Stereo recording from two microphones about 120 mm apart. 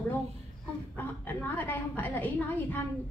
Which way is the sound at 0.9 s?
15° left (ahead or behind).